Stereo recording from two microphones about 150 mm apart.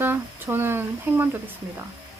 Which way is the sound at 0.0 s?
15° right (ahead or behind).